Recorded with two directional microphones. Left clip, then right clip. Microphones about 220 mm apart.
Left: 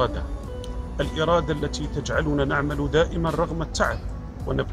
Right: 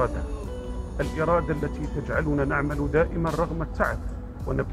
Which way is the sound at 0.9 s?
15° left (ahead or behind).